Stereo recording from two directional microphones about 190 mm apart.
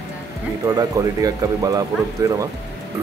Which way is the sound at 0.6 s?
20° right (ahead or behind).